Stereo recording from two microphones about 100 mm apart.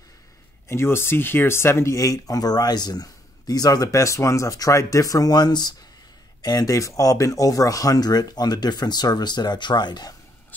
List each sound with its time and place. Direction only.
0.7 s speech: 25° left (ahead or behind); by 10.1 s 45° left (ahead or behind)